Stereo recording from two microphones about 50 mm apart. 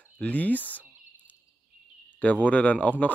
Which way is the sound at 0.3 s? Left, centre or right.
Left.